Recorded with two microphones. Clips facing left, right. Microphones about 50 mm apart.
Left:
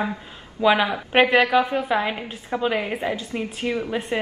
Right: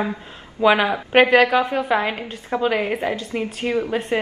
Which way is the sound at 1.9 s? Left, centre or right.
Centre.